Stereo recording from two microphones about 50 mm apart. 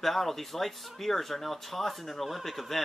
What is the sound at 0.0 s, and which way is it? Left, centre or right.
Speech, centre.